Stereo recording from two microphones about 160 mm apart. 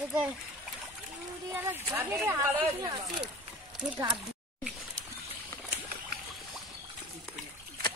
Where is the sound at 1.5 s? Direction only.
15° right (ahead or behind).